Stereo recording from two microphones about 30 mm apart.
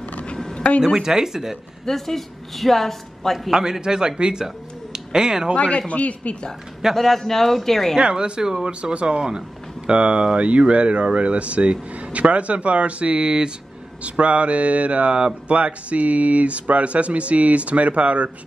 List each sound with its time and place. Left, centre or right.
0.9 s speech: centre
1.9 s speech: centre
3.8 s speech: right
5.6 s speech: left
7.0 s speech: centre
8.0 s speech: right
9.8 s speech: right
14.0 s speech: right